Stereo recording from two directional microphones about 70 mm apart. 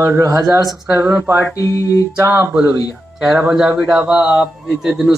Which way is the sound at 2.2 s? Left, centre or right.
Right.